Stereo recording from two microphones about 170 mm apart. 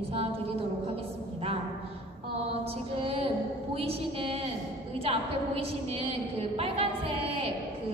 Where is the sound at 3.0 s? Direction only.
35° right (ahead or behind).